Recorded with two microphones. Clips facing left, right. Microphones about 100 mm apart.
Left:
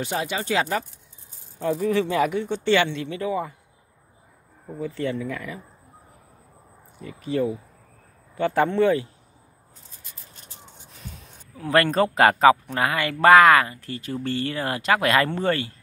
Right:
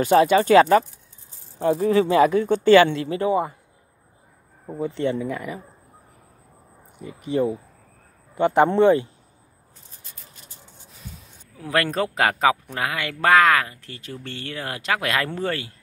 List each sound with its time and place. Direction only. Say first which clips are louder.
0.0 s speech: right 11 dB; 50° right (ahead or behind)
1.7 s speech: right 4 dB; 35° right (ahead or behind)
2.3 s speech: right 7 dB; 45° right (ahead or behind); by 3.5 s 30° right (ahead or behind)
4.6 s speech: right 3 dB; 25° right (ahead or behind)
7.0 s speech: right 2 dB; 20° right (ahead or behind)
11.0 s a man's voice: even; 5° right (ahead or behind)